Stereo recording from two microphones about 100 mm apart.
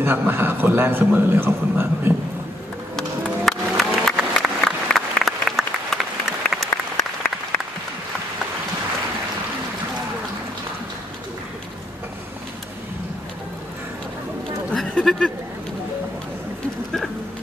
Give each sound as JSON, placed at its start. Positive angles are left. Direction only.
{"t": 0.0, "sound": "a man's voice", "side_deg": -20}
{"t": 3.4, "sound": "applause", "side_deg": 5}
{"t": 14.7, "sound": "a sound", "side_deg": 5}